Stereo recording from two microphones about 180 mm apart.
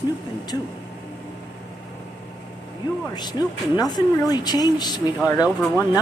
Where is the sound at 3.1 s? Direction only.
25° left (ahead or behind).